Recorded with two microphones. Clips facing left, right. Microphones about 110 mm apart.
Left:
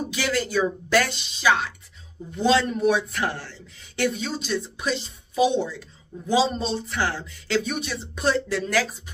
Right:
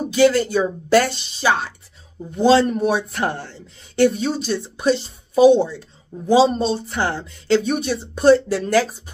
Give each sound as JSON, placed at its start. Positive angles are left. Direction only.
{"t": 0.1, "sound": "speech", "side_deg": -30}
{"t": 4.0, "sound": "speech", "side_deg": -40}